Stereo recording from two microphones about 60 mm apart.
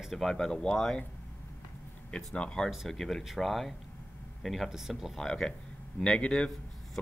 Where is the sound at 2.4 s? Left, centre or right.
Centre.